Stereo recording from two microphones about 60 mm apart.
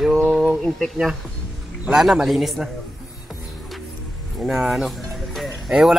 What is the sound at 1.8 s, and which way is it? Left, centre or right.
Speech, centre.